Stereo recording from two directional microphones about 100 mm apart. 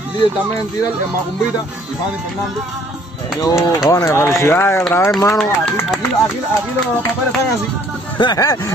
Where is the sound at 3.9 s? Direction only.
35° left (ahead or behind).